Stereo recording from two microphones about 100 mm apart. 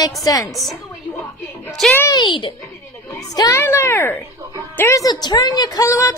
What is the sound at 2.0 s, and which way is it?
Speech, 50° left (ahead or behind).